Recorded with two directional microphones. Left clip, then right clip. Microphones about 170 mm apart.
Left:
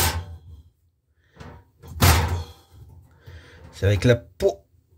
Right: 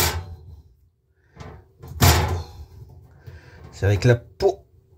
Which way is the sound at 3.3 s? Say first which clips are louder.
Right 1 dB; 20° left (ahead or behind).